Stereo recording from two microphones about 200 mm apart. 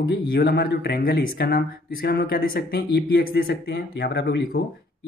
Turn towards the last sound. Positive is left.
turn(degrees=55)  # may be behind; listen again after turning